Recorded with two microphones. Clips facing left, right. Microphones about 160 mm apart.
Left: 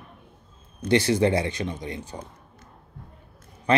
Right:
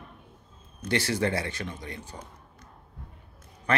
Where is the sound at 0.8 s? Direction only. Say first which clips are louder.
Left 7 dB; 20° left (ahead or behind).